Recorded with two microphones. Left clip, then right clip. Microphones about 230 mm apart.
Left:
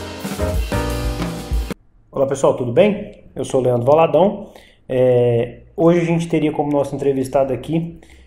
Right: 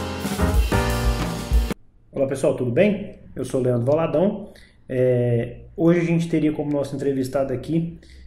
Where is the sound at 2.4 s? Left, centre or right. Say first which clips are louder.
Left 6 dB; left.